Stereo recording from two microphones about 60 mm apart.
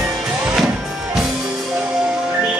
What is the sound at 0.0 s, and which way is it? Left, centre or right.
Music, centre.